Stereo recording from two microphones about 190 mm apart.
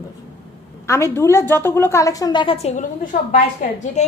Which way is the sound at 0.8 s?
15° left (ahead or behind).